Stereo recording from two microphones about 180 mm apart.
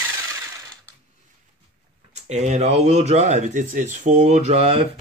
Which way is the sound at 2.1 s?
40° right (ahead or behind).